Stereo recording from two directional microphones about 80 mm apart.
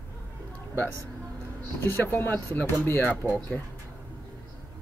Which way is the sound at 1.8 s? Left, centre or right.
Left.